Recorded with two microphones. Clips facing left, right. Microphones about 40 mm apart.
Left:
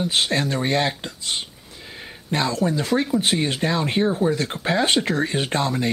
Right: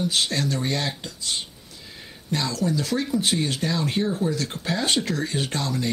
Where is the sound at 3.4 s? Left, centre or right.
Left.